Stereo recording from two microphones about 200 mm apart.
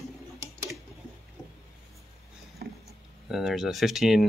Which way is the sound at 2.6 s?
50° right (ahead or behind).